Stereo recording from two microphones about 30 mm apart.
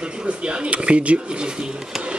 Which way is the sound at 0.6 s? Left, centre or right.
Right.